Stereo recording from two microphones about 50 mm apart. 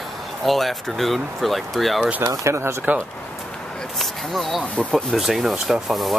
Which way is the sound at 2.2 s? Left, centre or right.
Right.